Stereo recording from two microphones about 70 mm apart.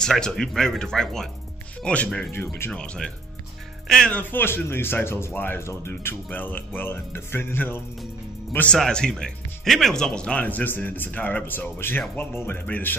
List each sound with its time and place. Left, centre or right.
0.0 s speech: centre
2.3 s speech: left
2.7 s speech: centre
4.1 s speech: left
6.2 s speech: left
8.7 s speech: centre; by 12.9 s left